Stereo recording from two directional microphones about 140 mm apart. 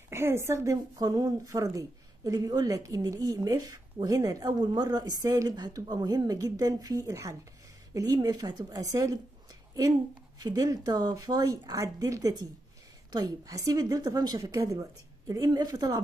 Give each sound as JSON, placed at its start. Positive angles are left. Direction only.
{"t": 0.1, "sound": "a woman's voice", "side_deg": -20}
{"t": 10.4, "sound": "a woman's voice", "side_deg": -25}